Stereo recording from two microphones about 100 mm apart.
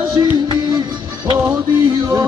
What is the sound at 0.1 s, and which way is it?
Music, 40° right (ahead or behind).